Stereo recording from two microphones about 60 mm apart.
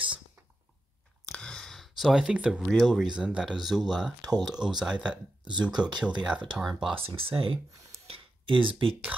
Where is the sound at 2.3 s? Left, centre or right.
Centre.